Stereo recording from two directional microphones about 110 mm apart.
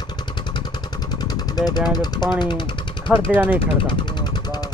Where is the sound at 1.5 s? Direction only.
35° left (ahead or behind).